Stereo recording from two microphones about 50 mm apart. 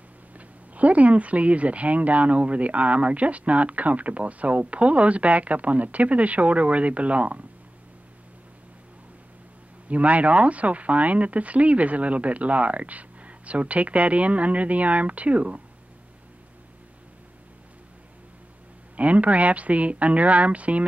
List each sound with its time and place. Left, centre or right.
0.3 s speech: right
9.8 s speech: right
18.9 s speech: right